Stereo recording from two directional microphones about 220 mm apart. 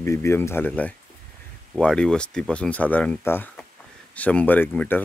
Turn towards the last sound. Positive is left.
turn(degrees=5)  # may be behind; listen again after turning